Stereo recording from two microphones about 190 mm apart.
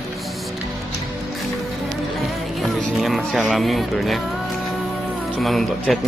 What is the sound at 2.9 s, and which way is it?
Speech, centre (ahead or behind).